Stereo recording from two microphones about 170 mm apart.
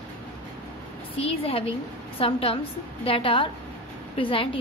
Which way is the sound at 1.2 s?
35° left (ahead or behind).